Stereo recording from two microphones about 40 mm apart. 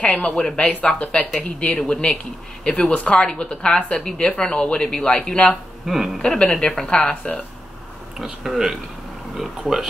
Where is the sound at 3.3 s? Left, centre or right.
Left.